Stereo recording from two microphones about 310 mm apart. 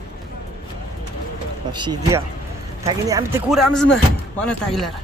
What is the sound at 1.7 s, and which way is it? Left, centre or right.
Speech, centre.